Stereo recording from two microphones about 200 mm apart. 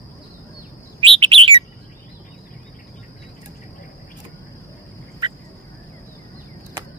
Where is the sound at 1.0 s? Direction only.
25° right (ahead or behind).